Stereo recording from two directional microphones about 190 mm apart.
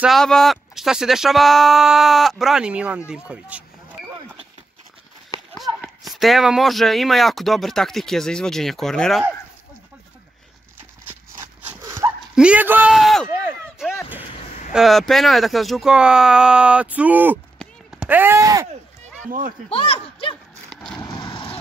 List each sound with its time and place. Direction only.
0.0 s speech: centre (ahead or behind)
6.0 s speech: centre (ahead or behind)
11.8 s dog: 15° right (ahead or behind)
12.4 s speech: 5° right (ahead or behind)
13.3 s a sound: 10° right (ahead or behind)
14.7 s speech: centre (ahead or behind)
17.6 s run: 5° right (ahead or behind)
19.2 s speech: 45° right (ahead or behind)
19.7 s speech: 30° left (ahead or behind)
20.7 s vehicle: 5° left (ahead or behind)
21.2 s vehicle: 25° left (ahead or behind)